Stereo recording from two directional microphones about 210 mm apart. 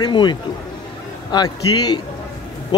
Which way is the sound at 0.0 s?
20° left (ahead or behind).